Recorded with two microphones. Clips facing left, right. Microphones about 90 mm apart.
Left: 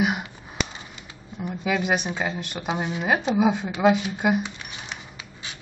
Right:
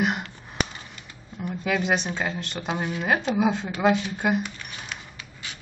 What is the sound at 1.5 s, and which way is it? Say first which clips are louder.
A woman's voice: even; 5° left (ahead or behind).